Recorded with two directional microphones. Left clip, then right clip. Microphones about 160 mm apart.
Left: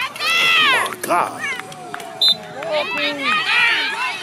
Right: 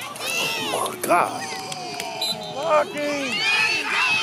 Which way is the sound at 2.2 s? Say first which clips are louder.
Left 11 dB; 10° right (ahead or behind).